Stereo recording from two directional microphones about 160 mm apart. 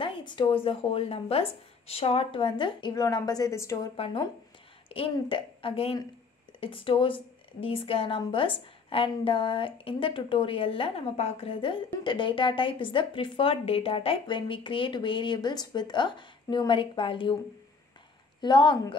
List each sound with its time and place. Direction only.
0.0 s a woman's voice: 30° left (ahead or behind)
3.9 s a woman's voice: 35° left (ahead or behind)
18.4 s a woman's voice: 30° left (ahead or behind)